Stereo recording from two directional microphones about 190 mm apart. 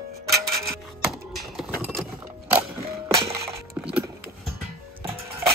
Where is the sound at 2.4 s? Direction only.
15° right (ahead or behind).